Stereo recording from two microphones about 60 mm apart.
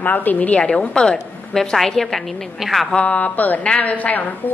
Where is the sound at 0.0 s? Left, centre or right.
Left; by 2.9 s centre.